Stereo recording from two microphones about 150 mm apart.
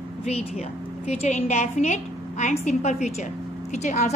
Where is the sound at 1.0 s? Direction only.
50° left (ahead or behind).